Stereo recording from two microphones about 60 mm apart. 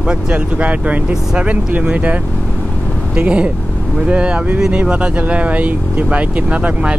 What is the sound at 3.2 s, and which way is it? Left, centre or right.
Speech, centre.